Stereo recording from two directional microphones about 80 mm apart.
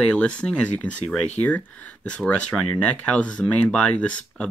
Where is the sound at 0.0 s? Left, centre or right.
Centre.